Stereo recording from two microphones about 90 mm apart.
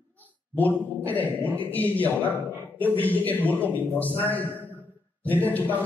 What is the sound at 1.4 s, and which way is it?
A man's voice, 20° left (ahead or behind).